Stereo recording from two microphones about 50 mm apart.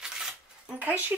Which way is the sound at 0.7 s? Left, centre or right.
Right.